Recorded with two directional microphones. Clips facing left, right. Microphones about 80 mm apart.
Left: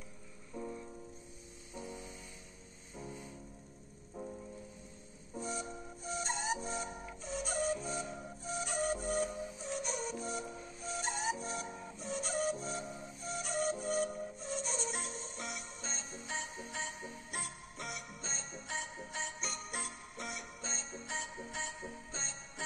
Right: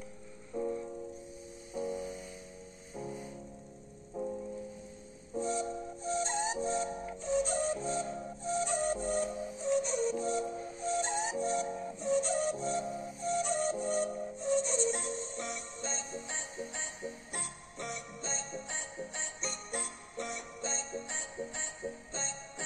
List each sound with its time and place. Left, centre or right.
0.6 s music: centre
5.4 s music: centre
7.2 s flute: centre
8.5 s music: centre